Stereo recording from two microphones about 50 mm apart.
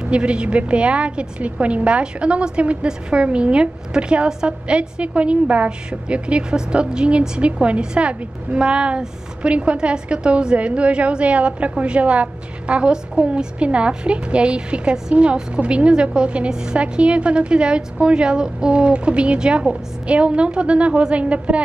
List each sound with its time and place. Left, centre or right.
0.0 s a woman's voice: right